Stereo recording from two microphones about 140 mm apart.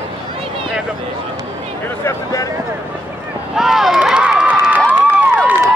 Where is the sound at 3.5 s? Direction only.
Centre (ahead or behind).